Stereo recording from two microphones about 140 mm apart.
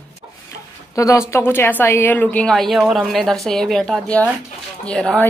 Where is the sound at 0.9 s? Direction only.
20° left (ahead or behind); by 5.1 s 5° left (ahead or behind).